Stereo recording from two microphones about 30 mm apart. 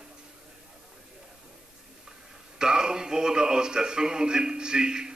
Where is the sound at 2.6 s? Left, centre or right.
Right.